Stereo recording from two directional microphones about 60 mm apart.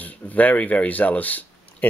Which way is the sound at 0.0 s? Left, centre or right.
Left.